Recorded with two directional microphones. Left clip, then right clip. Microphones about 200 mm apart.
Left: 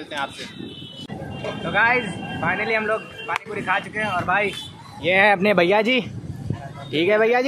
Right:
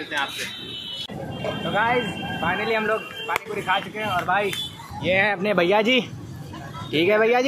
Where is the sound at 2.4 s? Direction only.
20° left (ahead or behind).